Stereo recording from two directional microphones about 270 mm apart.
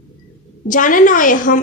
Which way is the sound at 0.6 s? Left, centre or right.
Left.